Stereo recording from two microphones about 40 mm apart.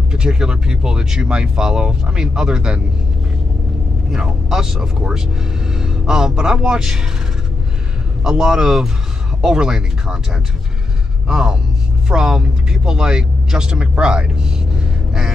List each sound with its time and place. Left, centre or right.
0.1 s speech: centre
4.1 s speech: centre
8.2 s speech: centre